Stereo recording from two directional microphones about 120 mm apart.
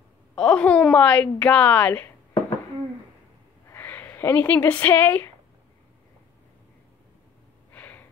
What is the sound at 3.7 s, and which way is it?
Speech, 15° left (ahead or behind).